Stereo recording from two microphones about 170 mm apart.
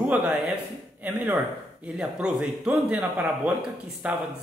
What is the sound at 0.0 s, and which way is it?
Speech, 5° right (ahead or behind).